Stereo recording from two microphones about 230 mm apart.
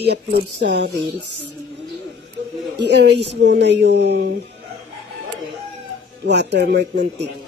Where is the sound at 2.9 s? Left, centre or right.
Right.